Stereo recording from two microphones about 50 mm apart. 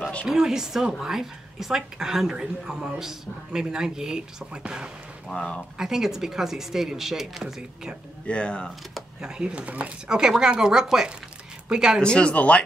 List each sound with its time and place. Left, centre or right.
0.3 s a woman's voice: centre
5.3 s speech: centre
5.8 s a woman's voice: centre
8.3 s speech: left
9.2 s a woman's voice: centre
9.6 s speech: right
10.0 s a woman's voice: centre
12.0 s speech: centre